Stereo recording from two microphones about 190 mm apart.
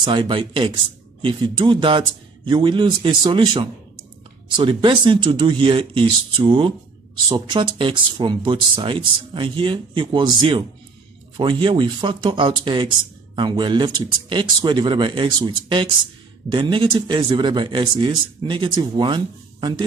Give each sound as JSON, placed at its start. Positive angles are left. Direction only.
{"t": 0.0, "sound": "speech", "side_deg": -25}